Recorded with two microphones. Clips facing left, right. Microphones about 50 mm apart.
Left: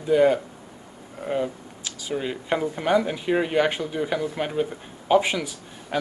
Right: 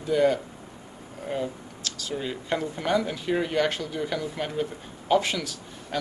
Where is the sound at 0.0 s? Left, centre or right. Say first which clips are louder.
Left 4 dB; centre.